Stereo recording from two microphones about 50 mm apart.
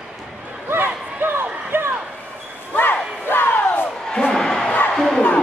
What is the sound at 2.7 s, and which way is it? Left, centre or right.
Battle cry, left.